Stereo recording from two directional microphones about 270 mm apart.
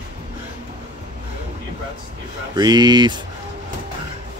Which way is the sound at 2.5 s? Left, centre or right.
Centre.